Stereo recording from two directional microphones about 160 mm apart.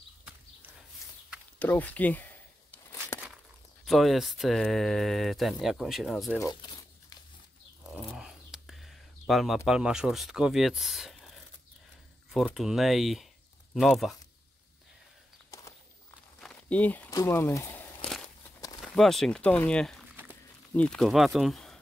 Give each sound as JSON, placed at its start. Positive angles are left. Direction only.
{"t": 0.2, "sound": "a sound", "side_deg": -5}
{"t": 1.6, "sound": "crumpling", "side_deg": 10}
{"t": 3.8, "sound": "speech", "side_deg": 0}
{"t": 6.5, "sound": "crumpling", "side_deg": 25}
{"t": 7.9, "sound": "a sound", "side_deg": -5}
{"t": 9.7, "sound": "speech", "side_deg": -5}
{"t": 15.5, "sound": "a sound", "side_deg": 20}
{"t": 16.3, "sound": "speech", "side_deg": 5}
{"t": 18.8, "sound": "speech", "side_deg": 0}